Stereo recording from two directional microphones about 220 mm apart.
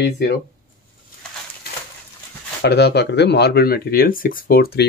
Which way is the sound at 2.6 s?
50° left (ahead or behind).